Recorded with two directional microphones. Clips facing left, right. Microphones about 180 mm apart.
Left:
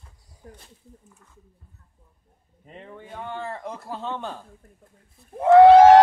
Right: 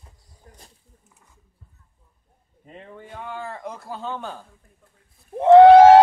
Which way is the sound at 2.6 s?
Centre (ahead or behind).